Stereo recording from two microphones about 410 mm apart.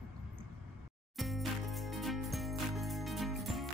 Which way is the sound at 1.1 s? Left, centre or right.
Centre.